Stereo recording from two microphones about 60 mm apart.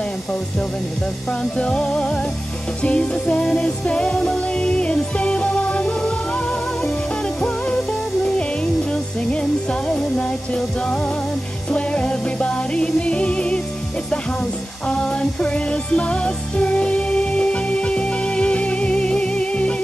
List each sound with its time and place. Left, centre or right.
1.4 s music: centre
8.9 s music: centre
14.9 s music: centre